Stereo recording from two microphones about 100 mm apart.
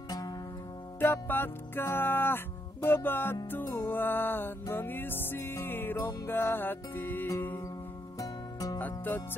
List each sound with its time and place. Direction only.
0.9 s music: 20° left (ahead or behind)
8.2 s music: 35° left (ahead or behind)
8.7 s music: 20° left (ahead or behind)